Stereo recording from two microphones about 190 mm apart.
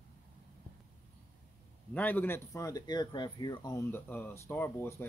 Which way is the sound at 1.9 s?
10° left (ahead or behind).